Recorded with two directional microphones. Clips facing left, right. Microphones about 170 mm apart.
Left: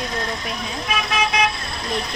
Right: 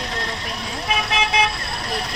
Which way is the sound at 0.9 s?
30° right (ahead or behind).